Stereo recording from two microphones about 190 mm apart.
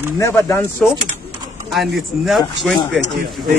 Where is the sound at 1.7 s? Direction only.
Centre (ahead or behind).